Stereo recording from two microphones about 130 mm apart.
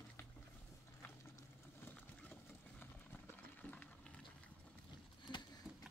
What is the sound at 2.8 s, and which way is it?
Run, 15° left (ahead or behind).